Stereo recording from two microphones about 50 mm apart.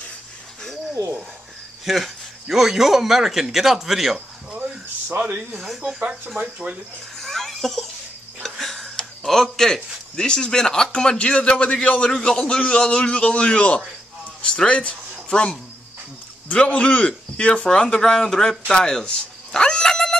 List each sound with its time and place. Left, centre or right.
1.9 s a man's voice: centre
4.6 s a sound: right
5.5 s a man's voice: centre
5.9 s speech: right
7.2 s a sound: centre
10.1 s a man's voice: centre
18.8 s dog: centre